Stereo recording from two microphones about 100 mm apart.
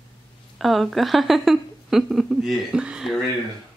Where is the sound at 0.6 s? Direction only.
Centre (ahead or behind).